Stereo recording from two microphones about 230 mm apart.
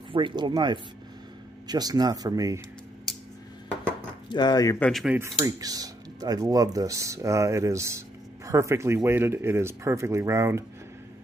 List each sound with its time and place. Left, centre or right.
0.1 s speech: centre
4.3 s speech: centre
5.4 s speech: centre